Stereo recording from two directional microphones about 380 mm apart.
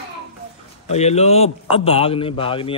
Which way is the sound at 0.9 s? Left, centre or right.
Centre.